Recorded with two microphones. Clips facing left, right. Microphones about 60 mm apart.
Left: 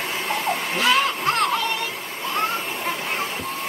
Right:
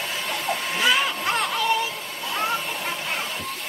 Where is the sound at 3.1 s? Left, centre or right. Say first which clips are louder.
Left 3 dB; left.